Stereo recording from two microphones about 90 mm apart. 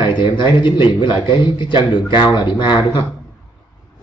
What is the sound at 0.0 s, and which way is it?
A man's voice, 55° left (ahead or behind).